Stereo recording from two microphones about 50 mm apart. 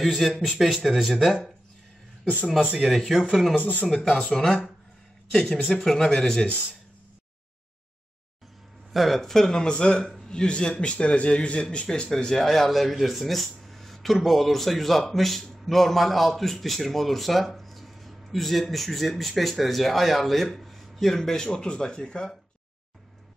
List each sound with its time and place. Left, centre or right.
0.0 s speech: centre
3.0 s speech: centre
3.8 s speech: centre
5.8 s speech: centre
8.9 s speech: centre
9.6 s speech: centre